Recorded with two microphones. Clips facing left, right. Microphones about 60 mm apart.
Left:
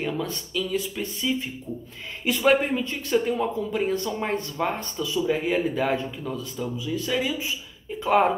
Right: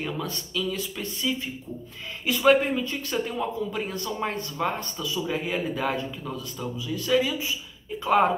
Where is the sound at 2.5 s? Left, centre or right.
Left.